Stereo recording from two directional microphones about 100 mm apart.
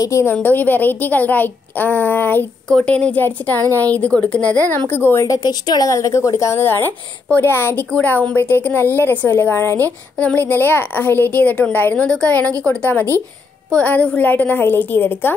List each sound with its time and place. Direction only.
0.0 s a woman's voice: 30° left (ahead or behind)